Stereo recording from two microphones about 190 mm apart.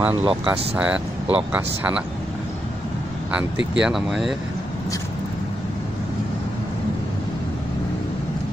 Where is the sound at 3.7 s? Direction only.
5° right (ahead or behind).